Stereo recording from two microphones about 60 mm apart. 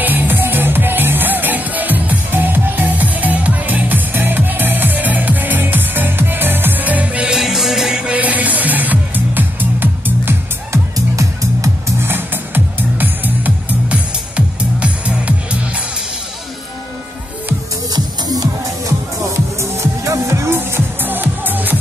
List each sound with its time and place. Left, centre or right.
0.0 s music: right
7.2 s music: centre
8.2 s music: right
11.0 s music: right
12.0 s music: right; by 15.3 s centre
17.9 s music: right
19.6 s music: right
20.5 s music: right